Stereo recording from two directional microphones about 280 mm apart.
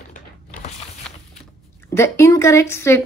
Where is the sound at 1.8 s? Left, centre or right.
Centre.